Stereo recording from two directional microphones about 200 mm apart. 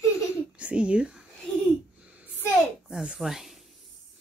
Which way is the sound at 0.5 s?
5° right (ahead or behind).